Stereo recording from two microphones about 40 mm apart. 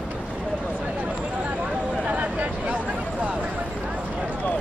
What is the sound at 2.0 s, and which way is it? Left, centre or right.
Vehicle, right.